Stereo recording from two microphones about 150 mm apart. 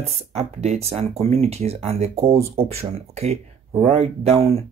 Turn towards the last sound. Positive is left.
turn(degrees=-45)  # may be behind; listen again after turning